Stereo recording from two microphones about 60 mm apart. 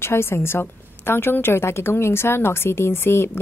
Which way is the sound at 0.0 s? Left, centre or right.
Left.